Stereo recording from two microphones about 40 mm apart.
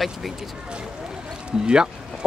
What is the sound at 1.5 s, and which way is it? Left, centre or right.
Speech, centre.